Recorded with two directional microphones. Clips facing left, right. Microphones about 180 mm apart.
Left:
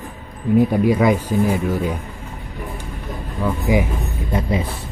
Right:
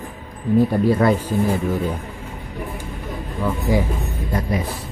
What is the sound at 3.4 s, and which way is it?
Speech, 15° left (ahead or behind).